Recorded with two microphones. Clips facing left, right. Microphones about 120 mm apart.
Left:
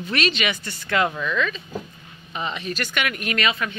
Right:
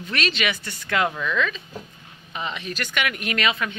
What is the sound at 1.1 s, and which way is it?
Speech, 15° left (ahead or behind).